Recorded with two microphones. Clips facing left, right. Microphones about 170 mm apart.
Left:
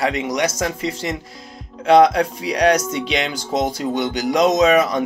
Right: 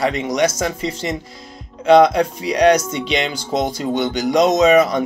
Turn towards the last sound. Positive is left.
turn(degrees=5)  # may be behind; listen again after turning